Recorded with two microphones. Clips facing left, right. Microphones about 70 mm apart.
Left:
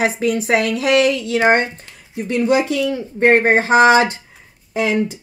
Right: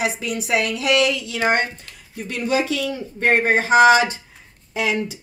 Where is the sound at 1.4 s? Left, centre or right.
Left.